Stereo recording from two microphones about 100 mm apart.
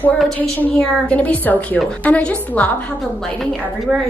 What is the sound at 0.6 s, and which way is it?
A woman's voice, 15° left (ahead or behind).